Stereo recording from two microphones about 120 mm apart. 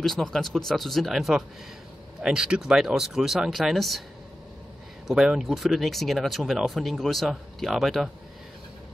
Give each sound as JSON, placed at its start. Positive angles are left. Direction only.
{"t": 0.0, "sound": "speech", "side_deg": 5}
{"t": 5.0, "sound": "speech", "side_deg": -5}